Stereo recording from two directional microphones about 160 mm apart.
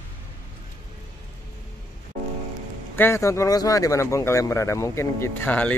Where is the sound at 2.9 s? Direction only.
15° left (ahead or behind).